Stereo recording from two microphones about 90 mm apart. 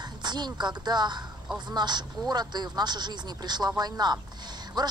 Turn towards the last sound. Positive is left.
turn(degrees=-50)  # may be behind; listen again after turning